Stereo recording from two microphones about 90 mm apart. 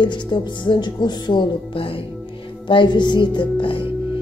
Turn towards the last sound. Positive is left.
turn(degrees=70)  # may be behind; listen again after turning